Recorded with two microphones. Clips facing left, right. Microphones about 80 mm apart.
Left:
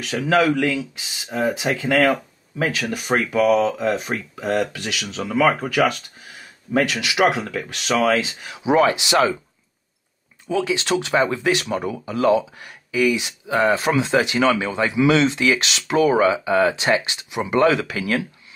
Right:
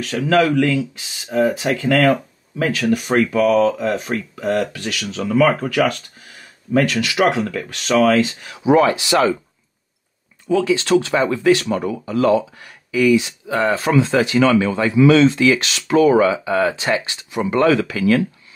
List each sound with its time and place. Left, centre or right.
0.0 s speech: centre
10.5 s speech: centre